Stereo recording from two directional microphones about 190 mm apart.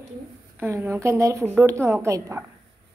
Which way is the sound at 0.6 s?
10° right (ahead or behind).